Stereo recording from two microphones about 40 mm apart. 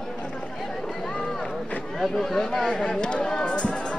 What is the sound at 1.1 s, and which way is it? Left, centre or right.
Run, left.